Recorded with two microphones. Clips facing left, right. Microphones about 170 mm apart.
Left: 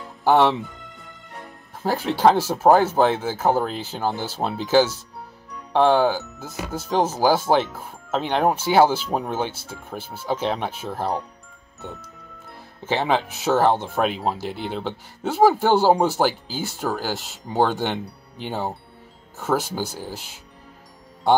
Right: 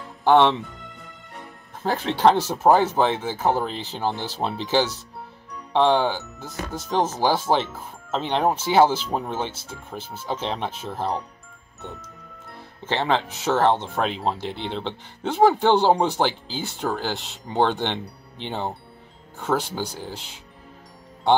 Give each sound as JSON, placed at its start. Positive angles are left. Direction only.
{"t": 0.2, "sound": "speech", "side_deg": 5}
{"t": 1.8, "sound": "speech", "side_deg": 5}
{"t": 12.4, "sound": "speech", "side_deg": 10}